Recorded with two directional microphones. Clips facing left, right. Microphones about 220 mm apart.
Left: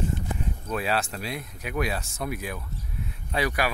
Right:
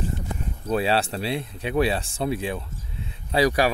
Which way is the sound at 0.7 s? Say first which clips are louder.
Right 6 dB; 30° right (ahead or behind).